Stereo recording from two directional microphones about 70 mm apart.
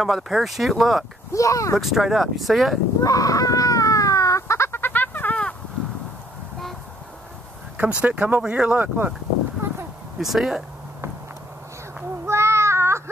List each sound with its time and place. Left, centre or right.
0.0 s speech: centre
1.3 s speech: left
1.8 s speech: centre
3.0 s a sound: left; by 5.6 s centre
7.7 s speech: centre
10.1 s speech: centre
12.3 s child singing: right